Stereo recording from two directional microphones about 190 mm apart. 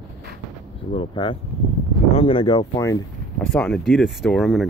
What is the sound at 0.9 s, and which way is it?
Speech, 25° left (ahead or behind).